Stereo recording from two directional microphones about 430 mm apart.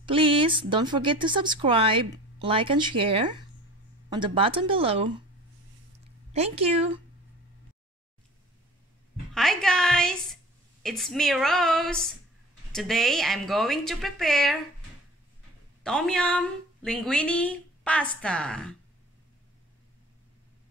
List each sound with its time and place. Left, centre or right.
0.0 s speech: centre
6.3 s speech: centre
9.3 s a woman's voice: centre
15.8 s a woman's voice: centre